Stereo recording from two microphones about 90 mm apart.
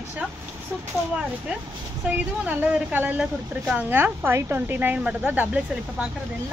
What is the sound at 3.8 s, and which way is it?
A woman's voice, 20° right (ahead or behind).